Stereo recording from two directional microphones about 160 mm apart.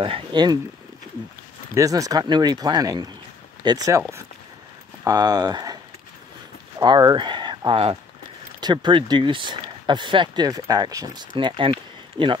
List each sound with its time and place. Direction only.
0.0 s speech: 30° right (ahead or behind)
1.8 s speech: 20° right (ahead or behind)
5.0 s speech: 25° right (ahead or behind)
6.8 s speech: 25° right (ahead or behind)